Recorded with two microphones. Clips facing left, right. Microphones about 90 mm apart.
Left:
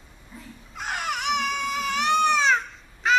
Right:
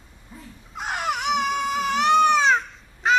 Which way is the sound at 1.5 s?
30° right (ahead or behind).